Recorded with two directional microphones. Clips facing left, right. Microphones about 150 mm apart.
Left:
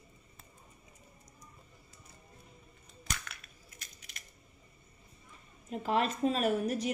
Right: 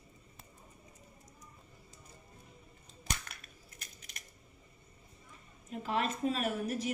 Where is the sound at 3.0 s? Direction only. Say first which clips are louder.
Right 1 dB; 40° right (ahead or behind).